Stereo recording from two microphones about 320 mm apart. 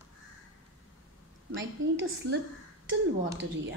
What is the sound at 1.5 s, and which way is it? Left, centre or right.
A woman's voice, right.